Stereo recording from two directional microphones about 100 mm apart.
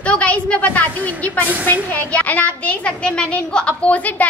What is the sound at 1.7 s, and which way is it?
A woman's voice, 15° left (ahead or behind).